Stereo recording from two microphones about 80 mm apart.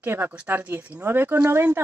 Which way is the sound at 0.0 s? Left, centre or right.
Right.